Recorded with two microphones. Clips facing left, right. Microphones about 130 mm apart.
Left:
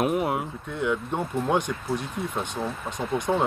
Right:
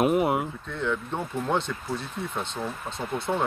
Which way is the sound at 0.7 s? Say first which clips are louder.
Left 3 dB; 15° left (ahead or behind).